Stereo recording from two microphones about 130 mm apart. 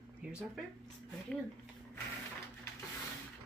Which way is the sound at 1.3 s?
5° left (ahead or behind).